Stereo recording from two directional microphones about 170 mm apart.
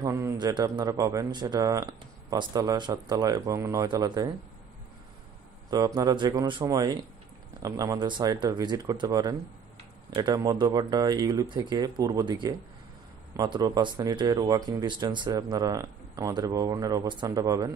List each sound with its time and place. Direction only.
0.0 s speech: 15° right (ahead or behind)
5.7 s speech: 25° right (ahead or behind)